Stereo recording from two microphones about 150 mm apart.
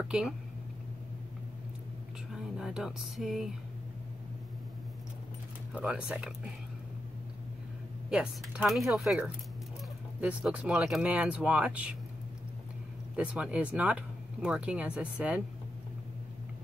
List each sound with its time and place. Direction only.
0.0 s a sound: 5° right (ahead or behind)
2.3 s speech: 5° right (ahead or behind)
5.7 s speech: 5° right (ahead or behind)
8.1 s speech: 5° right (ahead or behind)
13.1 s speech: 5° right (ahead or behind)